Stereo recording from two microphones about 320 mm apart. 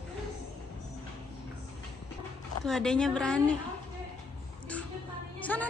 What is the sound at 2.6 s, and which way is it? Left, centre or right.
Speech, centre.